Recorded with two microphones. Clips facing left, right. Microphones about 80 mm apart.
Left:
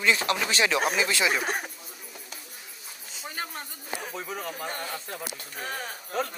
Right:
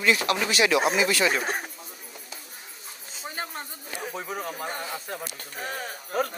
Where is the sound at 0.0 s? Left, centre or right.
Left.